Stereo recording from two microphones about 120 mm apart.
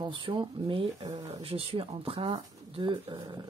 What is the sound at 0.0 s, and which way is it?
Speech, 45° right (ahead or behind).